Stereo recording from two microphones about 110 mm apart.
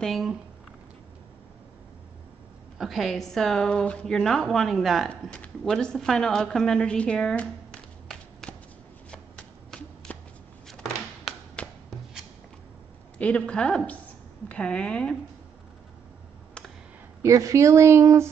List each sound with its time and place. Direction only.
0.0 s a woman's voice: centre (ahead or behind)
2.8 s a woman's voice: centre (ahead or behind)
5.1 s a woman's voice: 10° left (ahead or behind)
10.1 s shuffle: 15° left (ahead or behind)
10.7 s a sound: 5° left (ahead or behind)
13.2 s speech: 10° left (ahead or behind)
17.2 s speech: 30° right (ahead or behind)